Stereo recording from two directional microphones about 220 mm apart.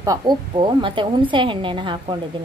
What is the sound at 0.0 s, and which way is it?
A woman's voice, 15° right (ahead or behind).